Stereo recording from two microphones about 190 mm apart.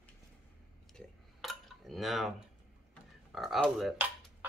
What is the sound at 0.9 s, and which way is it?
Dishes, centre (ahead or behind).